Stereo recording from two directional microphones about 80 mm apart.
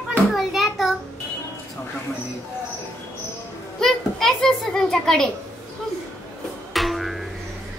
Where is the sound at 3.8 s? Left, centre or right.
Centre.